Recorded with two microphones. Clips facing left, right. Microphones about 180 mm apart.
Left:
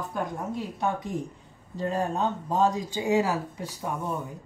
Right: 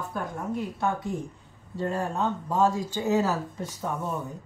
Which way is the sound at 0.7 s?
20° left (ahead or behind).